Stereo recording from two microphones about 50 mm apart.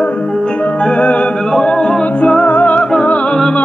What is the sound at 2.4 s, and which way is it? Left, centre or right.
Music, left.